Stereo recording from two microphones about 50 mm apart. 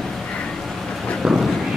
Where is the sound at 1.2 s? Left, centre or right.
Centre.